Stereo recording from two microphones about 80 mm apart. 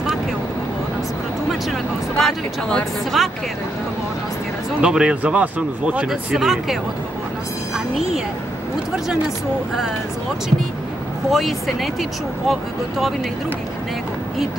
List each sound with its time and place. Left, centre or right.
2.1 s speech: centre
4.8 s speech: centre
6.3 s speech: centre
11.3 s speech: centre